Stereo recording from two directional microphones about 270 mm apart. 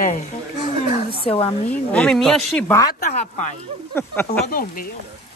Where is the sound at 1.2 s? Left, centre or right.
Left.